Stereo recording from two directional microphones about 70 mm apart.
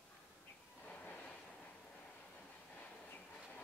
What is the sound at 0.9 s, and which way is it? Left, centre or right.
Vehicle, centre.